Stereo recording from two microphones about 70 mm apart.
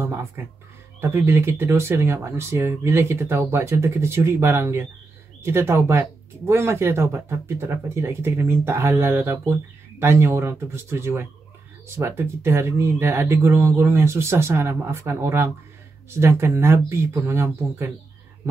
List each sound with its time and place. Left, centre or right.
0.0 s speech: right